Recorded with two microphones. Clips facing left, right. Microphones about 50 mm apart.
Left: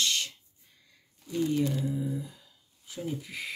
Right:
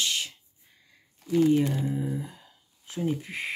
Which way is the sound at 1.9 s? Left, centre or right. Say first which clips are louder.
Right 2 dB; right.